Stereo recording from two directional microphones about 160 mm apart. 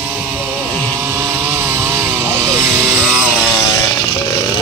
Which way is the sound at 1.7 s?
15° right (ahead or behind).